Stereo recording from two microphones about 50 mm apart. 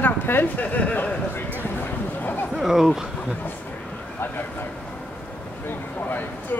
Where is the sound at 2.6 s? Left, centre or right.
Centre.